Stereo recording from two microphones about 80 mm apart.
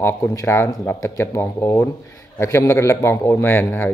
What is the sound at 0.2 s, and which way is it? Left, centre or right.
A man's voice, left.